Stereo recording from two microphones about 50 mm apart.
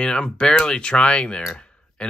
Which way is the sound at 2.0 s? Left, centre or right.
Centre.